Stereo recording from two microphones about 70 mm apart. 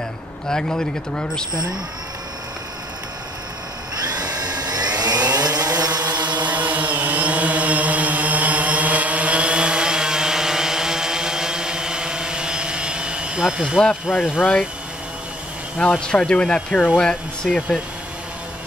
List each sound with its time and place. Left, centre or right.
0.5 s speech: centre
4.0 s vacuum cleaner: right
5.3 s chainsaw: right
6.4 s vehicle: right
14.1 s speech: centre
16.1 s speech: centre